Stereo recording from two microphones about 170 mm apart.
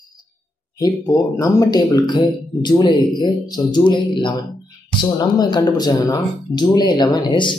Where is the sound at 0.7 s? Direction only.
20° left (ahead or behind).